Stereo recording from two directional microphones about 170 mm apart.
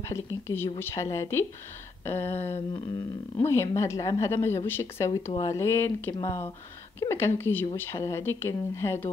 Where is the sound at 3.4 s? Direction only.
15° left (ahead or behind).